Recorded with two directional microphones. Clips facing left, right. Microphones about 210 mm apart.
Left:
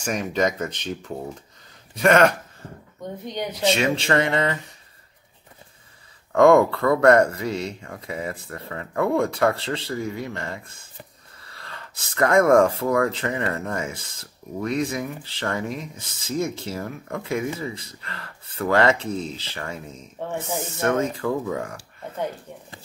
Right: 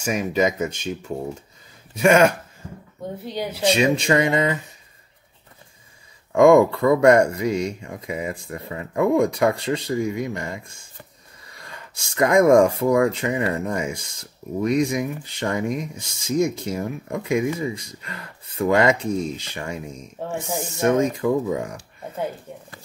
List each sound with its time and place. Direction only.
0.0 s speech: 10° right (ahead or behind)
6.3 s speech: 15° right (ahead or behind)